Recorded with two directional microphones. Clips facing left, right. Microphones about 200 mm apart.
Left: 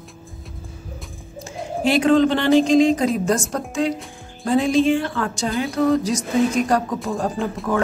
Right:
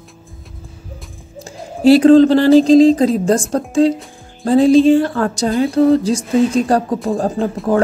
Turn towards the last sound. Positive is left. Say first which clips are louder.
# right 6 dB
turn(degrees=-25)  # may be behind; listen again after turning